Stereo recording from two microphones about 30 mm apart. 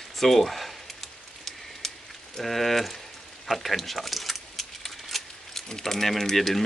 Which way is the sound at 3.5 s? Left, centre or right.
Centre.